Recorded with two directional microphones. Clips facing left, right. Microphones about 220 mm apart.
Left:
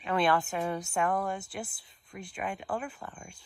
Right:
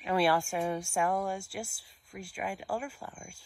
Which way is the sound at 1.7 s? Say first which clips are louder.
Left 1 dB; 20° left (ahead or behind).